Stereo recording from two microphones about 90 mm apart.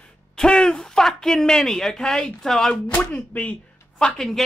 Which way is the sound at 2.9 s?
15° left (ahead or behind).